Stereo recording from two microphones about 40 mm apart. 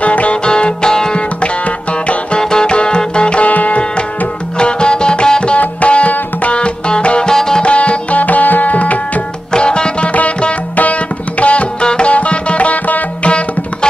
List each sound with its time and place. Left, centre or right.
0.0 s music: left
0.5 s music: left
2.3 s music: left
4.6 s music: left
7.2 s music: centre
7.6 s tabla: left
9.5 s music: left
10.8 s music: left